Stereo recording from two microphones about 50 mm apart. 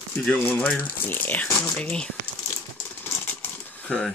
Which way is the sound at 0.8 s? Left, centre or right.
Left.